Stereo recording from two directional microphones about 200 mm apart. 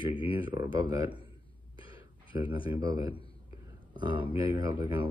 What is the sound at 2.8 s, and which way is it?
Speech, 20° right (ahead or behind).